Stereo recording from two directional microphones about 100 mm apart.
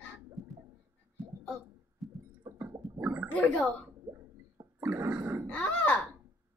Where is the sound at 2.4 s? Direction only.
20° right (ahead or behind).